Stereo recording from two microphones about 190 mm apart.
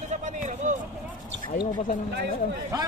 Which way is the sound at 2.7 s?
20° right (ahead or behind).